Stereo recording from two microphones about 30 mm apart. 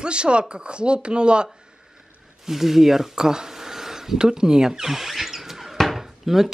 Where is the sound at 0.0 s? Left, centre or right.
Right.